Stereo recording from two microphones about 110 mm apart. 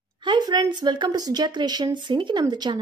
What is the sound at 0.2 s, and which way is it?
A woman's voice, 45° right (ahead or behind).